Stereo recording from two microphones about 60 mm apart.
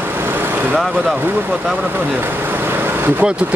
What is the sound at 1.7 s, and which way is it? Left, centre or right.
Vehicle, right.